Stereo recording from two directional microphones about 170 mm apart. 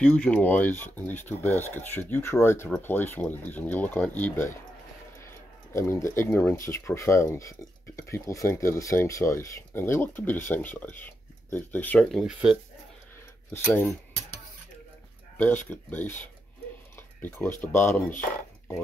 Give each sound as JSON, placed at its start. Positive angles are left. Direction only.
{"t": 0.0, "sound": "speech", "side_deg": 5}
{"t": 13.5, "sound": "speech", "side_deg": 15}
{"t": 15.3, "sound": "speech", "side_deg": 10}
{"t": 16.9, "sound": "a sound", "side_deg": 10}
{"t": 17.6, "sound": "speech", "side_deg": 15}